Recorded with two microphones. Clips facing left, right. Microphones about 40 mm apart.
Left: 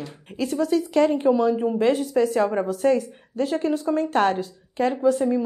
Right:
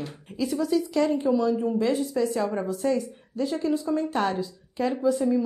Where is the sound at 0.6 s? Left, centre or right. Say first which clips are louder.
Left 4 dB; left.